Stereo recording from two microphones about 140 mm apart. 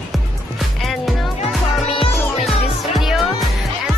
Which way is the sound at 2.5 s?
Centre (ahead or behind).